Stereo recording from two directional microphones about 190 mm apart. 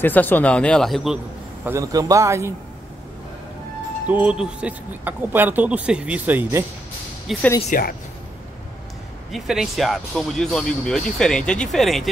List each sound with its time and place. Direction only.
0.0 s speech: 10° left (ahead or behind); by 2.5 s 15° right (ahead or behind)
4.1 s speech: 5° right (ahead or behind)
7.7 s speech: 45° left (ahead or behind)
9.3 s speech: centre (ahead or behind)